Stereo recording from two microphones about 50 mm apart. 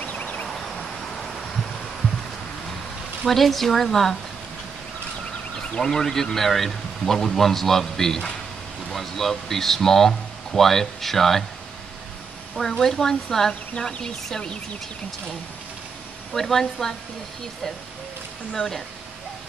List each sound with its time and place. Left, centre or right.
0.0 s a sound: left
0.9 s a sound: centre
3.3 s speech: centre
5.6 s a man's voice: centre
12.5 s a man's voice: centre
16.3 s a man's voice: centre
18.5 s a man's voice: centre